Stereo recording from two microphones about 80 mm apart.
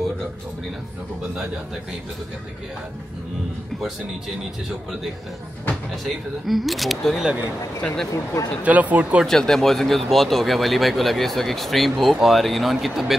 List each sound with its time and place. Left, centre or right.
6.0 s speech: centre
7.8 s speech: centre
8.6 s speech: centre
9.2 s speech: centre